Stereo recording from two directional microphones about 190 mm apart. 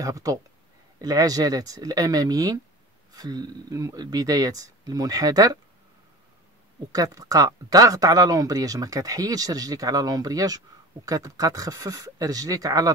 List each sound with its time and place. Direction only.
0.0 s speech: 20° right (ahead or behind)
6.9 s speech: 20° right (ahead or behind)